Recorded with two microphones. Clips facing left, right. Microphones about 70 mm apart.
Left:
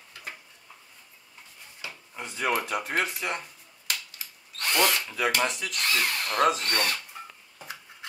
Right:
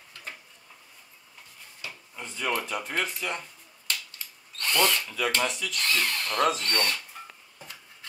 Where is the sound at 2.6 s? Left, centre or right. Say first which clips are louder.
Left 2 dB; centre.